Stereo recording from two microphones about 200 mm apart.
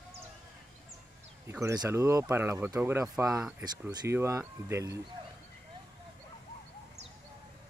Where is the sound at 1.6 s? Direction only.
15° right (ahead or behind).